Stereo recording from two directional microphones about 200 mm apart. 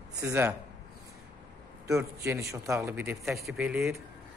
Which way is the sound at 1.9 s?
15° right (ahead or behind).